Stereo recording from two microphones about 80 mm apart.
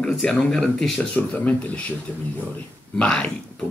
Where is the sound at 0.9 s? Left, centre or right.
Centre.